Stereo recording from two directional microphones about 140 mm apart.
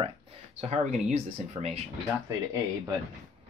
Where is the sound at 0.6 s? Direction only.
50° right (ahead or behind).